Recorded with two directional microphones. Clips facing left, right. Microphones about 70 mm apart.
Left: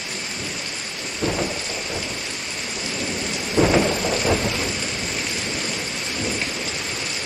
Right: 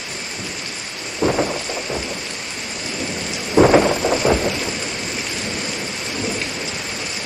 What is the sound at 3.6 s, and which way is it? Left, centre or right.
Thunder, right.